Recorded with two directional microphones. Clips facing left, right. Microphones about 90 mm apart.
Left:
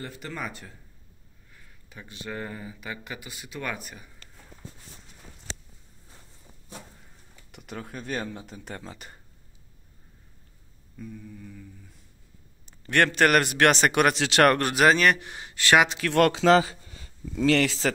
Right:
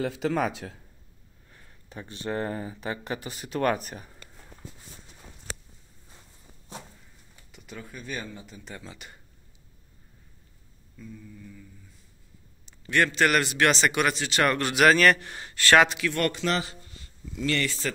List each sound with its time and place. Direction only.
0.0 s speech: 90° right
1.5 s speech: 35° right (ahead or behind)
7.5 s speech: 60° left (ahead or behind); by 9.2 s 40° left (ahead or behind)
12.6 s a man's voice: 50° left (ahead or behind)
14.1 s speech: 85° left; by 14.7 s 55° left (ahead or behind)
14.9 s a man's voice: 20° left (ahead or behind)
16.1 s a man's voice: 90° left
17.6 s a man's voice: 90° left